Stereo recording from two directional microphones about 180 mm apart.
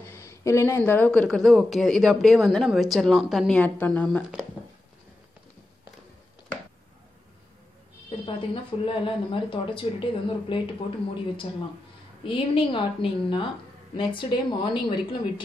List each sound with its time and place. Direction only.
0.0 s speech: 15° left (ahead or behind)
8.3 s speech: 30° left (ahead or behind)
12.3 s speech: 30° left (ahead or behind)